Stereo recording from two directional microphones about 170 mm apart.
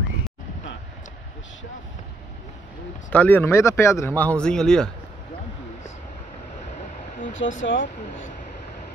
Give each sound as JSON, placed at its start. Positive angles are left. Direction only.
{"t": 3.1, "sound": "speech", "side_deg": 10}
{"t": 7.3, "sound": "speech", "side_deg": 90}